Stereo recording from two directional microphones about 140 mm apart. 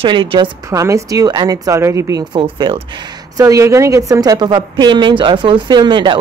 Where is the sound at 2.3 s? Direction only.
35° right (ahead or behind).